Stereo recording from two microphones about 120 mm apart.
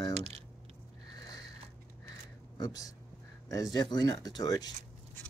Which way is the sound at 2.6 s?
30° left (ahead or behind).